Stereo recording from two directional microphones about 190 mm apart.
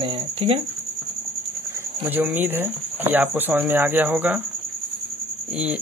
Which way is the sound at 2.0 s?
10° right (ahead or behind).